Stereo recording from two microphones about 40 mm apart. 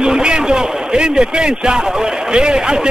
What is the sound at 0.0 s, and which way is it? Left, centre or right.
A man's voice, centre.